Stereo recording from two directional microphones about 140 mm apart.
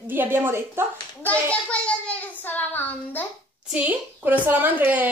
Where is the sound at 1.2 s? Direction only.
10° left (ahead or behind).